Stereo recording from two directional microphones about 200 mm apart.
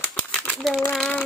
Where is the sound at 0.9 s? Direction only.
Centre (ahead or behind).